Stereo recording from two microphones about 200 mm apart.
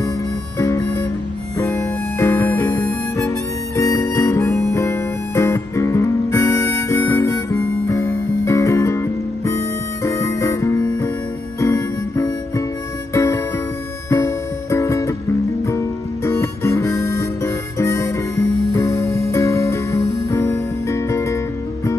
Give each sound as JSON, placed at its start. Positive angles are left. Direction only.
{"t": 0.6, "sound": "music", "side_deg": 15}
{"t": 1.6, "sound": "harmonica", "side_deg": 15}
{"t": 10.0, "sound": "music", "side_deg": 15}
{"t": 11.6, "sound": "harmonica", "side_deg": 15}
{"t": 13.1, "sound": "music", "side_deg": 15}
{"t": 16.3, "sound": "harmonica", "side_deg": 15}